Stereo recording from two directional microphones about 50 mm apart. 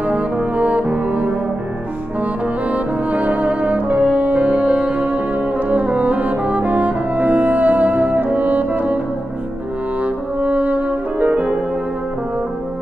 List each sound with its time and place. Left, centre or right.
0.0 s brass instrument: right
2.7 s brass instrument: right
10.0 s music: right